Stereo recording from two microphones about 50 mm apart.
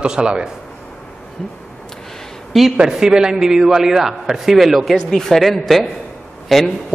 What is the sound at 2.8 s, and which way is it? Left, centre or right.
A man's voice, centre.